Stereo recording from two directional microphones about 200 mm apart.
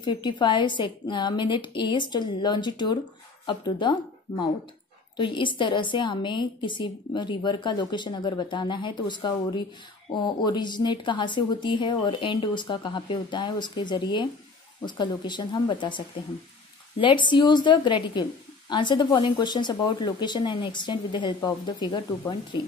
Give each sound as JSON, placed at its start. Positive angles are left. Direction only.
{"t": 0.0, "sound": "a woman's voice", "side_deg": 20}
{"t": 5.1, "sound": "a woman's voice", "side_deg": 25}
{"t": 17.0, "sound": "a woman's voice", "side_deg": 25}